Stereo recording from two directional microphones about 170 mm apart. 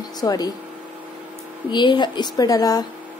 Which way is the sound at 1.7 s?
25° left (ahead or behind).